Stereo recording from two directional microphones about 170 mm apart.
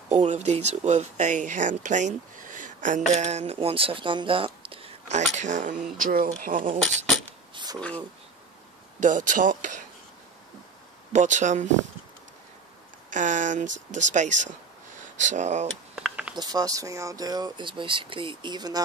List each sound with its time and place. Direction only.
0.1 s speech: 45° right (ahead or behind)
7.5 s a sound: 25° right (ahead or behind)
9.0 s speech: 50° right (ahead or behind)
11.1 s speech: 45° right (ahead or behind)
13.1 s speech: 50° right (ahead or behind)
16.0 s a sound: 5° right (ahead or behind)
16.3 s speech: 20° right (ahead or behind)